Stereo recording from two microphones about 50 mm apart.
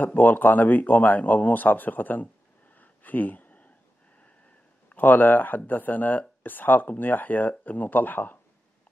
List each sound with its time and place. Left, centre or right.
0.0 s speech: left
2.8 s a sound: left
4.8 s speech: left